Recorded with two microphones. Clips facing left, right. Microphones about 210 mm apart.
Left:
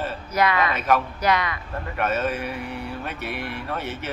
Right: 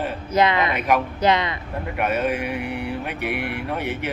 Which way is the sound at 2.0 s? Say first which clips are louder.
Right 3 dB; 15° right (ahead or behind).